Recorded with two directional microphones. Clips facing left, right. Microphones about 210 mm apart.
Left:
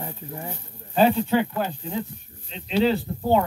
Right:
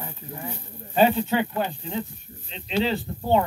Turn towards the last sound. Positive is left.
turn(degrees=0)  # may be behind; listen again after turning